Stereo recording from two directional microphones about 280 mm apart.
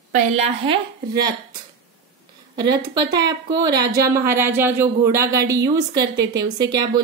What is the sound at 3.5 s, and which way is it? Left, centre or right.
Speech, right.